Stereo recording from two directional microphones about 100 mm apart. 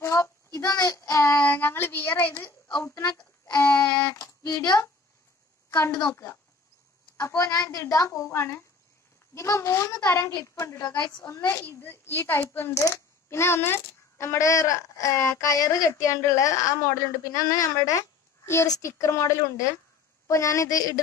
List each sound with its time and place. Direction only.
0.0 s child singing: 25° left (ahead or behind)
3.5 s a sound: 25° left (ahead or behind)
6.1 s speech: 25° left (ahead or behind)
7.2 s a sound: 30° left (ahead or behind)
9.3 s a child's voice: 30° left (ahead or behind)
10.9 s a woman's voice: 45° left (ahead or behind)
11.2 s a woman's voice: 25° left (ahead or behind)